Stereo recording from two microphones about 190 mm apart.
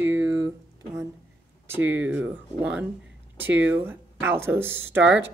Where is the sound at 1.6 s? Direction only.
10° right (ahead or behind).